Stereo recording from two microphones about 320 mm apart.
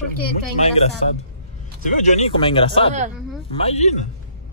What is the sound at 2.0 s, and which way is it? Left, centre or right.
Speech, centre.